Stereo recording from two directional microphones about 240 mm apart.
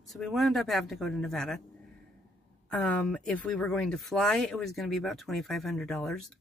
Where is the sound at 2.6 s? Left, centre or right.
Centre.